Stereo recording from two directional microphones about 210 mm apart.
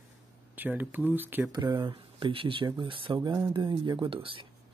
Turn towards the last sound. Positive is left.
turn(degrees=-25)  # may be behind; listen again after turning